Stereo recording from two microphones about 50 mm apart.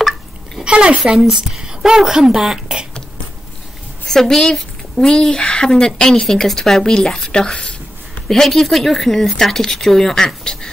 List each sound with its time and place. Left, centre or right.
0.7 s speech: centre
1.2 s speech: centre
4.1 s speech: centre